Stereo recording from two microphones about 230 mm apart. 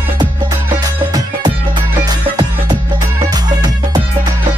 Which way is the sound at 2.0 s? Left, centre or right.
Centre.